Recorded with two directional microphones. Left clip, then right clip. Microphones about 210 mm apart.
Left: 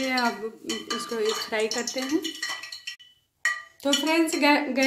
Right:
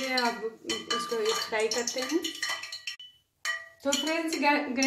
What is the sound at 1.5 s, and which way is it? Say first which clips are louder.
Dishes: left 2 dB; 55° left (ahead or behind).